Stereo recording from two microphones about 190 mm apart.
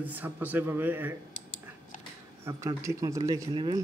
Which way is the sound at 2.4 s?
15° right (ahead or behind).